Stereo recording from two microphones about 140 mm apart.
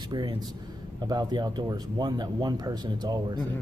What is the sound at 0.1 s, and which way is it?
Speech, 30° right (ahead or behind).